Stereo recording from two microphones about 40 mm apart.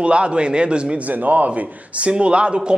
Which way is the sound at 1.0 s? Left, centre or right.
Right.